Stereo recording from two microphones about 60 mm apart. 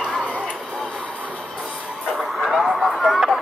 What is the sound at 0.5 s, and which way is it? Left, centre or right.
Music, centre.